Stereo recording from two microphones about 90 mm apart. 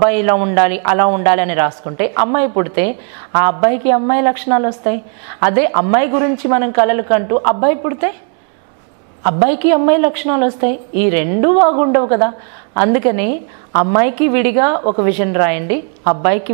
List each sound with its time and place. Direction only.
0.0 s a man's voice: 15° right (ahead or behind)
9.2 s a man's voice: 15° right (ahead or behind)